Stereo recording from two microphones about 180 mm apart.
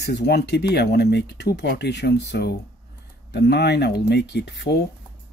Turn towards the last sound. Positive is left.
turn(degrees=70)  # may be behind; listen again after turning